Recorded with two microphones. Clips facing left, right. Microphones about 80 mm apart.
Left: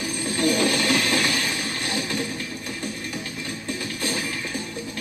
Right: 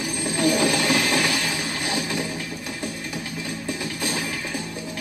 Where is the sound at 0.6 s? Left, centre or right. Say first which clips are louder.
Right 1 dB; centre.